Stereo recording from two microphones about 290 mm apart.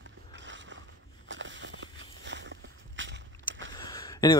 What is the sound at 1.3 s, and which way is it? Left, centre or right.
Walk, right.